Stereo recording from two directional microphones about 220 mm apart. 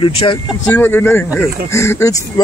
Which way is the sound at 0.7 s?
10° left (ahead or behind).